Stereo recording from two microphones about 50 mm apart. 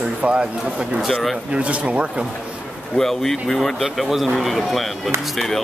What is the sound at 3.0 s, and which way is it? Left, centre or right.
Speech, centre.